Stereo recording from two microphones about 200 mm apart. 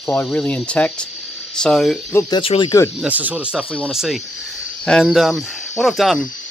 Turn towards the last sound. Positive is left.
turn(degrees=0)  # may be behind; listen again after turning